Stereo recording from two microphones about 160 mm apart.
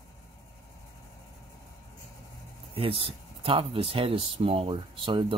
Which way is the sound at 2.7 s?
35° right (ahead or behind).